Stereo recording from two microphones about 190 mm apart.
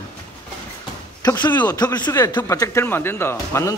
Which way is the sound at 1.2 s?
20° left (ahead or behind).